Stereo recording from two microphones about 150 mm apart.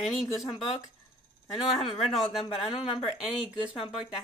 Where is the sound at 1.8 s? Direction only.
Centre (ahead or behind).